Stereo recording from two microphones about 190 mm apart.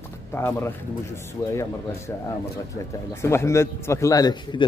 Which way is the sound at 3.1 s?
15° left (ahead or behind).